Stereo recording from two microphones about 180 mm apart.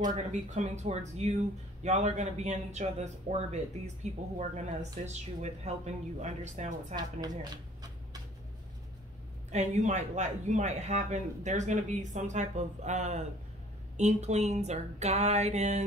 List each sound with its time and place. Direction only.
0.0 s speech: 40° right (ahead or behind)
9.5 s speech: 40° right (ahead or behind)